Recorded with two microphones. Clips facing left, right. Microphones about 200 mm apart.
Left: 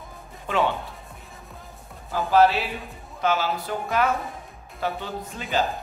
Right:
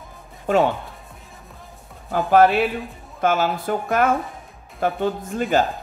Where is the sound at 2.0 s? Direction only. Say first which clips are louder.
Right 3 dB; 55° right (ahead or behind).